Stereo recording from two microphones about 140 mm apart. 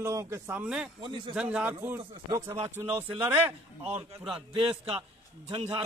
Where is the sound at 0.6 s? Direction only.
5° right (ahead or behind).